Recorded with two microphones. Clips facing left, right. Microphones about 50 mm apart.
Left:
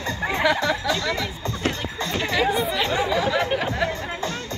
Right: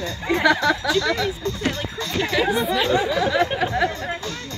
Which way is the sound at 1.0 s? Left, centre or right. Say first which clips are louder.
Right 5 dB; left.